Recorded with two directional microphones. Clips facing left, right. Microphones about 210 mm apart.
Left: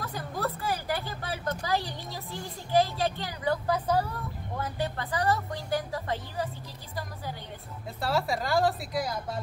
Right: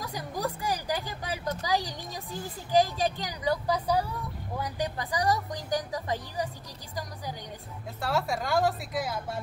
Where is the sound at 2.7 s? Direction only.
15° right (ahead or behind).